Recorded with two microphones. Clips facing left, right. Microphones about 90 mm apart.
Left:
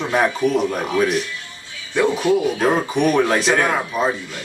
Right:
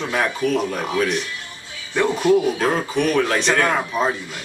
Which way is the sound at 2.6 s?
15° left (ahead or behind).